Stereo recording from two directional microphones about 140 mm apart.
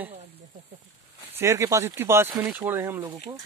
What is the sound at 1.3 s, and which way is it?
Speech, 20° right (ahead or behind).